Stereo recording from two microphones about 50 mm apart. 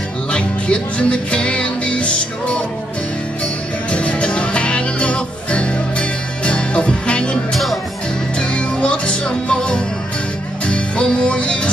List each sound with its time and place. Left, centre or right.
0.3 s music: left
3.9 s music: left
7.5 s music: centre
8.4 s music: left